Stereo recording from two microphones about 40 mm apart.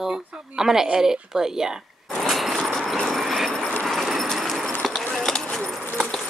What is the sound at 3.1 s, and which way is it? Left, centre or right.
Train, centre.